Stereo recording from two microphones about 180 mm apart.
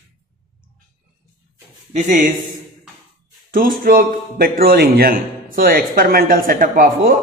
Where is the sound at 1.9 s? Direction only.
40° right (ahead or behind).